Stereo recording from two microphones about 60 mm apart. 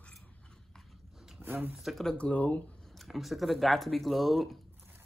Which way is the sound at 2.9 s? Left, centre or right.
Centre.